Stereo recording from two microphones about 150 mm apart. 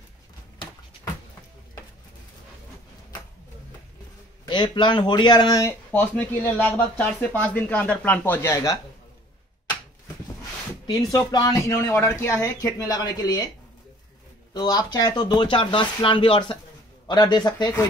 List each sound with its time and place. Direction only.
4.5 s speech: 30° left (ahead or behind)
5.9 s speech: 10° left (ahead or behind)
10.9 s speech: 25° left (ahead or behind)
14.5 s speech: 25° left (ahead or behind)